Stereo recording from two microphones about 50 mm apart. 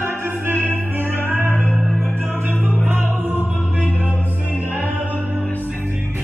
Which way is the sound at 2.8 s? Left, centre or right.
Right.